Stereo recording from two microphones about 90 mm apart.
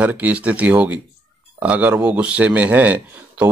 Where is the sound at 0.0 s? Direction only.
15° right (ahead or behind).